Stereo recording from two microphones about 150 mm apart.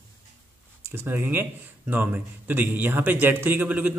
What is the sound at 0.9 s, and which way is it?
A man's voice, 15° right (ahead or behind).